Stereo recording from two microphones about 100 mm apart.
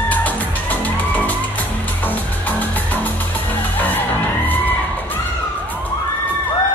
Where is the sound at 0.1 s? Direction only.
15° left (ahead or behind).